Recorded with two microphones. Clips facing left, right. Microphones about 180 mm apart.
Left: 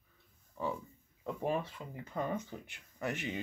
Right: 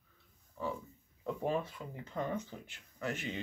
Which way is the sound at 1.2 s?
10° left (ahead or behind).